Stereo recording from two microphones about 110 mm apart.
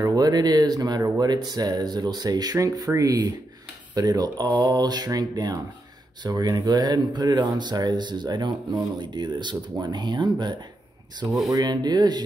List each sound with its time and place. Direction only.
0.0 s speech: 35° right (ahead or behind)